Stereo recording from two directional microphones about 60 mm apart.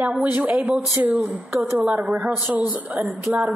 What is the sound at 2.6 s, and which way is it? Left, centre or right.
Speech, right.